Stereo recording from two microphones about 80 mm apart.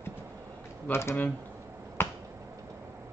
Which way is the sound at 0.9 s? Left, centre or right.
Left.